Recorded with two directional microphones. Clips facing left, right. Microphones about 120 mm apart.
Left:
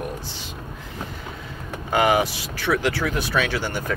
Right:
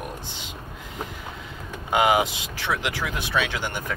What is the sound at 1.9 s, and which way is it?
Speech, 20° right (ahead or behind).